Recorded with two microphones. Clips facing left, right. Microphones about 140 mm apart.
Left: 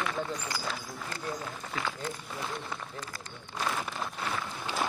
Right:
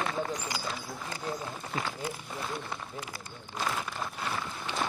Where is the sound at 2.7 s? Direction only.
10° right (ahead or behind).